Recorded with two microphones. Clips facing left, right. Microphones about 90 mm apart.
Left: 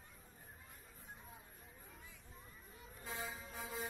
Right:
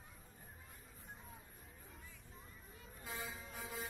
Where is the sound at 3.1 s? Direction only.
25° left (ahead or behind).